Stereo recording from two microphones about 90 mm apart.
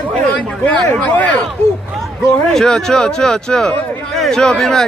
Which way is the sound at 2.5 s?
5° left (ahead or behind).